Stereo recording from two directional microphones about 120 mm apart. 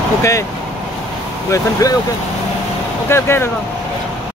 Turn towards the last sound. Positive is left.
turn(degrees=20)  # may be behind; listen again after turning